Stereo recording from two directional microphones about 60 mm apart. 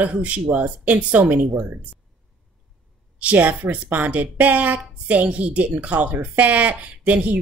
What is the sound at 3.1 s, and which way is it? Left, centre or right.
Speech, right.